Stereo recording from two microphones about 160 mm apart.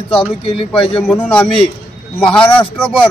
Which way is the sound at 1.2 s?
10° left (ahead or behind).